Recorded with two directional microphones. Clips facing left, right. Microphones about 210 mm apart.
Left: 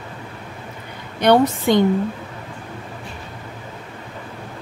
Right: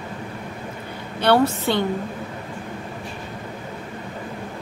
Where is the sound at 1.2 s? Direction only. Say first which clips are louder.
Left 3 dB; 15° left (ahead or behind).